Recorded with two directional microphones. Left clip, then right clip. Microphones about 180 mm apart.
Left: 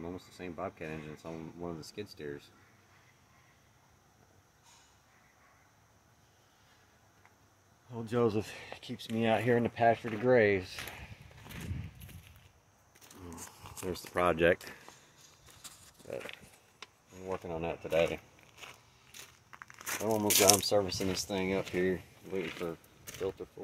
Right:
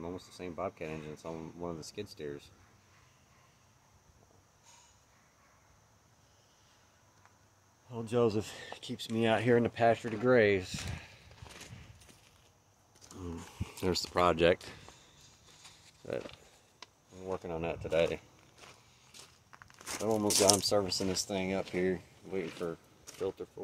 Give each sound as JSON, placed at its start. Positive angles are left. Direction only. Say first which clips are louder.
{"t": 0.0, "sound": "speech", "louder": "right 1 dB", "side_deg": -5}
{"t": 7.9, "sound": "speech", "louder": "right 1 dB", "side_deg": 0}
{"t": 14.1, "sound": "speech", "louder": "even", "side_deg": -20}
{"t": 17.2, "sound": "speech", "louder": "even", "side_deg": 0}
{"t": 19.5, "sound": "a sound", "louder": "left 5 dB", "side_deg": 10}
{"t": 19.9, "sound": "speech", "louder": "left 1 dB", "side_deg": 0}